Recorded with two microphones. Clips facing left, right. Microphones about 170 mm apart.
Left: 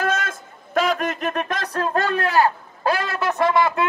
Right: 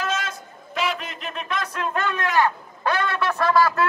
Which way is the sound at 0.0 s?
55° left (ahead or behind).